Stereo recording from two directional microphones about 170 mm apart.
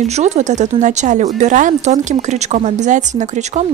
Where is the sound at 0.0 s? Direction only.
40° right (ahead or behind).